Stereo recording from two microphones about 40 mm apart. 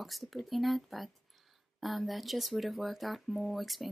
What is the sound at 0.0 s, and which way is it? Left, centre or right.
A woman's voice, centre.